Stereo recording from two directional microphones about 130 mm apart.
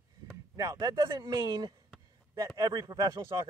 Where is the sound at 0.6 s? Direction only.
30° right (ahead or behind).